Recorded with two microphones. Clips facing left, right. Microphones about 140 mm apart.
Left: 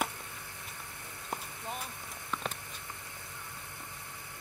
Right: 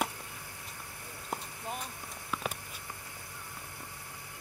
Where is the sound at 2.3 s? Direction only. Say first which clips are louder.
Right 1 dB; 5° right (ahead or behind).